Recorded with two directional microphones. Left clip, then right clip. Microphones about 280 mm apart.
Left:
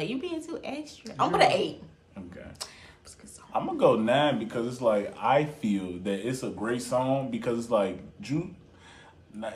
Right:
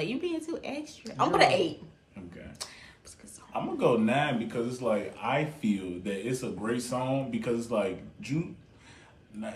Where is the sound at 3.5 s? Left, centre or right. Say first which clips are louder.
Left 3 dB; centre.